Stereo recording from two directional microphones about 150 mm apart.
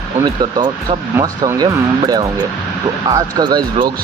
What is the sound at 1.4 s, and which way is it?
Speech, 25° right (ahead or behind).